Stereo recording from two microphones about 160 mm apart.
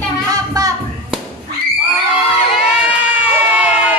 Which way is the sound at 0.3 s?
20° right (ahead or behind).